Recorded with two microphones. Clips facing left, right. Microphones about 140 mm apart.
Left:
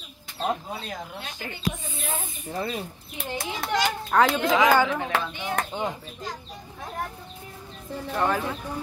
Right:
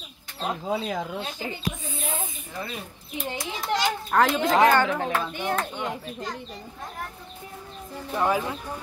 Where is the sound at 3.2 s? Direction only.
65° left (ahead or behind).